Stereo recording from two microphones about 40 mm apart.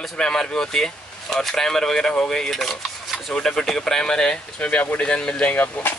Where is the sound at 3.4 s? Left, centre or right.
Centre.